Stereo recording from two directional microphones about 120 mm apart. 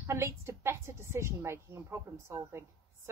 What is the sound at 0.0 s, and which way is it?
A woman's voice, 20° right (ahead or behind).